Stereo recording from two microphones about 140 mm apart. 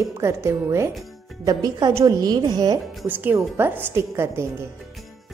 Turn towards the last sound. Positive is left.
turn(degrees=-20)  # may be behind; listen again after turning